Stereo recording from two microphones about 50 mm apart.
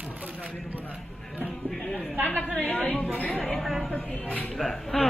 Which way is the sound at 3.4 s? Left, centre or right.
Centre.